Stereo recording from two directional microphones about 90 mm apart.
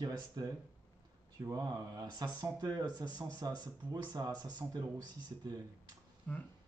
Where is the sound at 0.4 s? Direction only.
45° right (ahead or behind).